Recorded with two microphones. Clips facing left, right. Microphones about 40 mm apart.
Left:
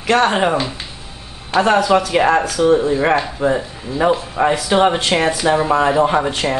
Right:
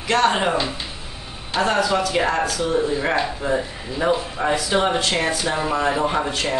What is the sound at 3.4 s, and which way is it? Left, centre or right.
A man's voice, left.